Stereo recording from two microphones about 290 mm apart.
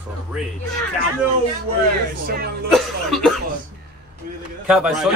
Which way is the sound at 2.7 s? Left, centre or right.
Centre.